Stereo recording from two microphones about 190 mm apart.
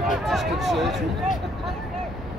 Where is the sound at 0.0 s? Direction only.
Centre (ahead or behind).